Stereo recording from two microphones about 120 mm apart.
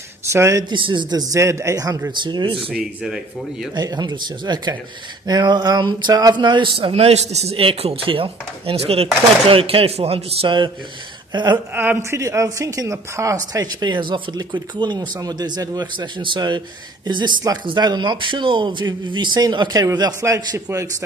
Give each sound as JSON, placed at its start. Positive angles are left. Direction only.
{"t": 0.2, "sound": "speech", "side_deg": -20}
{"t": 0.7, "sound": "speech", "side_deg": -45}
{"t": 1.3, "sound": "speech", "side_deg": -25}
{"t": 2.2, "sound": "a man's voice", "side_deg": -45}
{"t": 2.7, "sound": "speech", "side_deg": -5}
{"t": 3.7, "sound": "a man's voice", "side_deg": -35}
{"t": 11.7, "sound": "speech", "side_deg": -15}